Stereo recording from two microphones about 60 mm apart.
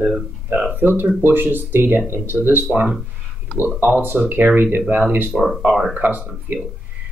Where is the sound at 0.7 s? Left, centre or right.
Right.